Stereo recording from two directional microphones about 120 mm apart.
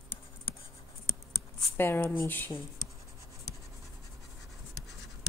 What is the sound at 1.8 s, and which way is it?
Speech, 20° left (ahead or behind).